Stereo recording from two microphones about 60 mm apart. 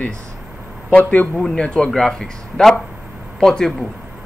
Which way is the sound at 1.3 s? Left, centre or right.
Centre.